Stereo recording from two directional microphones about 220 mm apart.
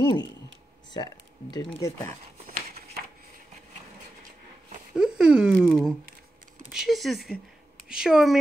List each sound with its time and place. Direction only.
0.0 s speech: 20° left (ahead or behind)
4.9 s speech: 5° right (ahead or behind)